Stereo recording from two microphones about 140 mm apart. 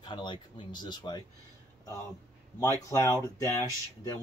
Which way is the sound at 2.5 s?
20° left (ahead or behind).